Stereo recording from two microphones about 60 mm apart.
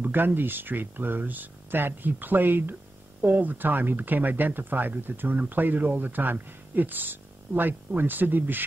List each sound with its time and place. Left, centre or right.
0.0 s speech: right